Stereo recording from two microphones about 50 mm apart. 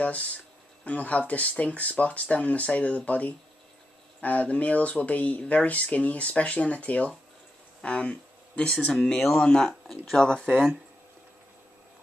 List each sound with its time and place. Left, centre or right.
0.0 s speech: left
7.8 s a sound: left
9.0 s speech: centre